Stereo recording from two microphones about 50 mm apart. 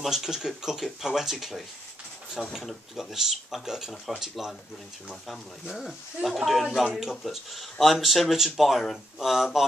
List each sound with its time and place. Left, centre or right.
0.0 s speech: centre
2.6 s speech: centre